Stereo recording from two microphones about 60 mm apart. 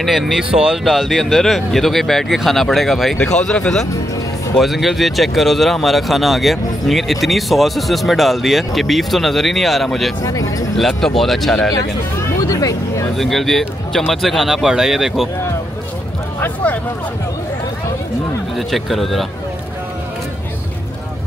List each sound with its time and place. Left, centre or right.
0.0 s speech: centre
3.2 s speech: centre
4.6 s speech: centre
10.2 s speech: left
10.8 s speech: centre
12.4 s speech: left
13.1 s speech: centre
16.3 s a sound: left
18.6 s speech: centre